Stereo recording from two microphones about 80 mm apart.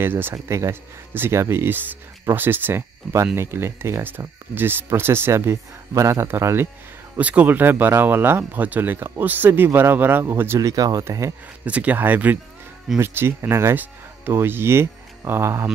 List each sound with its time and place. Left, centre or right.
0.0 s speech: right
7.2 s speech: centre
10.6 s speech: right
11.6 s speech: centre